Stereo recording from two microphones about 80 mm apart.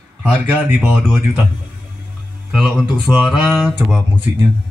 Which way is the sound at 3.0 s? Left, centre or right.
Centre.